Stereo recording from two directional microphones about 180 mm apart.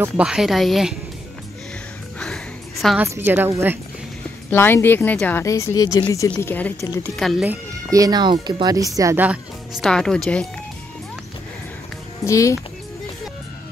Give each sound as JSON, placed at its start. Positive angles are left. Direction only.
{"t": 0.0, "sound": "speech", "side_deg": -5}
{"t": 2.1, "sound": "a sound", "side_deg": 0}
{"t": 3.0, "sound": "a woman's voice", "side_deg": -10}
{"t": 4.5, "sound": "speech", "side_deg": 10}
{"t": 7.2, "sound": "speech", "side_deg": 0}
{"t": 7.4, "sound": "speech", "side_deg": -20}
{"t": 9.8, "sound": "speech", "side_deg": 5}
{"t": 12.3, "sound": "speech", "side_deg": 15}